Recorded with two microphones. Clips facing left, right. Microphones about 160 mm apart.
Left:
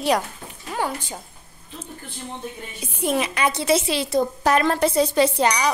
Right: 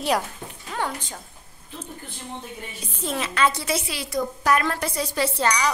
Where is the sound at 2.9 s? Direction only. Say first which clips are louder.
Left 4 dB; 15° left (ahead or behind).